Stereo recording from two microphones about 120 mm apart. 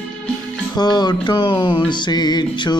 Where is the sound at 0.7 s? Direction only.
35° left (ahead or behind).